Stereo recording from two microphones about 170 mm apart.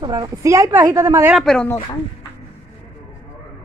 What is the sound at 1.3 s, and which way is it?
Speech, 5° left (ahead or behind).